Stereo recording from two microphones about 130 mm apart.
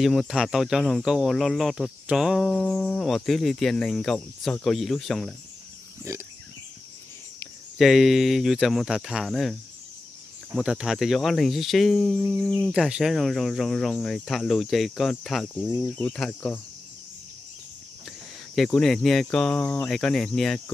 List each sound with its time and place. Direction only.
0.0 s speech: centre (ahead or behind)
2.5 s speech: 10° left (ahead or behind)
6.1 s speech: 20° right (ahead or behind)
7.7 s speech: centre (ahead or behind)
18.5 s speech: centre (ahead or behind)